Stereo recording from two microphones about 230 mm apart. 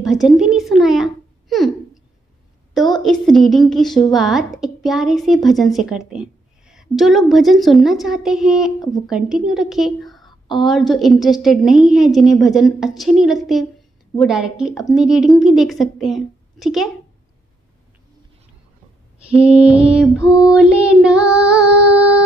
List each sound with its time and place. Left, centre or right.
0.0 s a child's voice: centre
3.0 s a woman's voice: centre
19.2 s a woman's voice: centre
20.3 s female singing: centre